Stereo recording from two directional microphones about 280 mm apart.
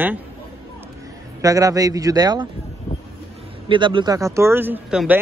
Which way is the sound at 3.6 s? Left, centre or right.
Centre.